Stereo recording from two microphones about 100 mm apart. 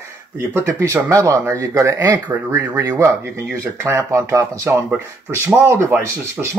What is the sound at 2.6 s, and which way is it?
Speech, 20° right (ahead or behind).